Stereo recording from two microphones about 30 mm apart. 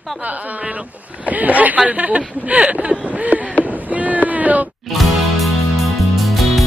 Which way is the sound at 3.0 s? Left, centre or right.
Right.